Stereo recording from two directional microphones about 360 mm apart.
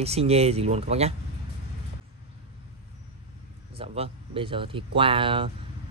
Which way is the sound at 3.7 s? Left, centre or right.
Centre.